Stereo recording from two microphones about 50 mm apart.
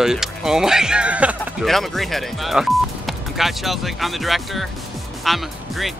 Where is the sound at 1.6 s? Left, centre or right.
Centre.